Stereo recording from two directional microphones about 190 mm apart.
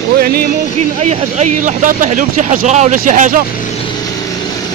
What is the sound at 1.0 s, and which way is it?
Speech, 35° right (ahead or behind).